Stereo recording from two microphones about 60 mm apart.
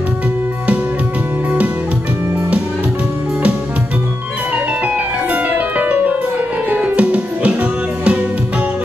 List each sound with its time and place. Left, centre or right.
4.8 s music: right